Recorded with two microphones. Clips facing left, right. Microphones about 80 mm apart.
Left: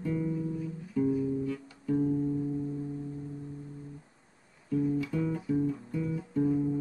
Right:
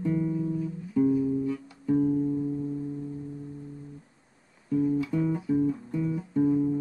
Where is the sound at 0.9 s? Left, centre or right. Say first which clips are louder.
Right 5 dB; centre.